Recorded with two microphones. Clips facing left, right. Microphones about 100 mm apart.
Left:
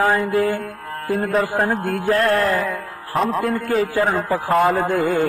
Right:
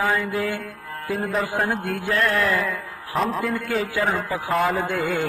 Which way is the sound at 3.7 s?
40° left (ahead or behind).